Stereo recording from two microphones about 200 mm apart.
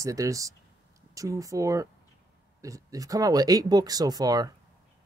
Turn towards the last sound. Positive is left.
turn(degrees=-20)  # may be behind; listen again after turning